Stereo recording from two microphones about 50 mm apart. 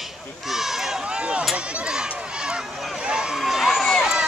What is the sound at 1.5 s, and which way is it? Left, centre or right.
Speech, right.